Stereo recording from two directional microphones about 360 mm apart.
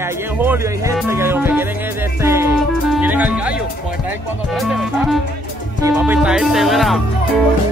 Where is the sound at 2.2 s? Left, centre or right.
Centre.